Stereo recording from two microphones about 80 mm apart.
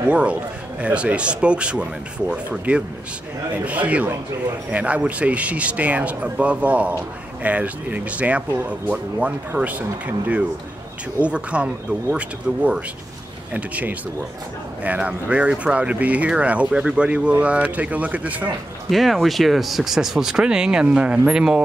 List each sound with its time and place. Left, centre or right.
0.1 s a man's voice: centre
18.9 s speech: centre